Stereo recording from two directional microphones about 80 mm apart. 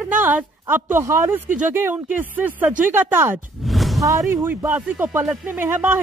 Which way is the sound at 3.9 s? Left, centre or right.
Right.